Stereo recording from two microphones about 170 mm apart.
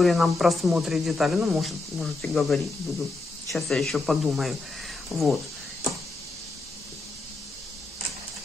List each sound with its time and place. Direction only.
0.0 s speech: centre (ahead or behind)